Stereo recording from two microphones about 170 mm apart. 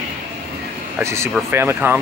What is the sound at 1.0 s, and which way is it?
Speech, 15° right (ahead or behind).